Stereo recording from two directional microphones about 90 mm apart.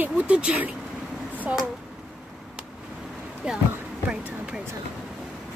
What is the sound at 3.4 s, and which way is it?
Speech, 10° right (ahead or behind).